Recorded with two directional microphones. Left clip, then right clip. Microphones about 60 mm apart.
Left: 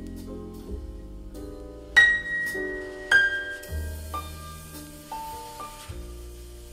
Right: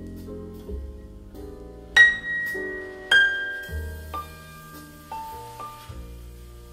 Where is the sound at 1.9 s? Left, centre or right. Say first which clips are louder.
Right 2 dB; left.